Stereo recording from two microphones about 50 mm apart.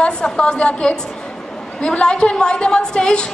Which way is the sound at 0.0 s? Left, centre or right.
Centre.